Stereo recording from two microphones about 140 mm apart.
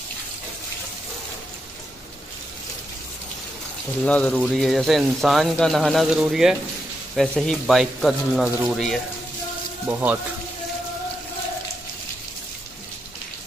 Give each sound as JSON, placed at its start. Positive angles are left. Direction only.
{"t": 4.0, "sound": "speech", "side_deg": 10}
{"t": 9.8, "sound": "speech", "side_deg": -15}